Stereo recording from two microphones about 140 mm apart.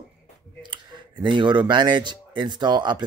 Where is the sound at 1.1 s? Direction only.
35° right (ahead or behind).